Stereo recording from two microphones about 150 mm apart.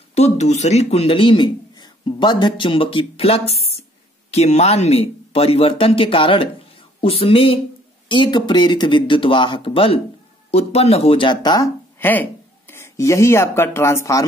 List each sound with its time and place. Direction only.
0.1 s a man's voice: 50° left (ahead or behind); by 11.7 s 25° left (ahead or behind)
12.0 s speech: 15° left (ahead or behind)